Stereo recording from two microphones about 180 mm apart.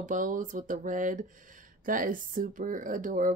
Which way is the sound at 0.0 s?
45° right (ahead or behind).